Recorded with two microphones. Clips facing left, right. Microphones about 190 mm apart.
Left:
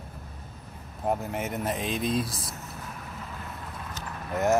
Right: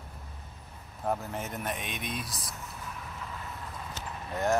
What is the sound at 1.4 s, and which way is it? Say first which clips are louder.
Speech: left 6 dB; 25° left (ahead or behind).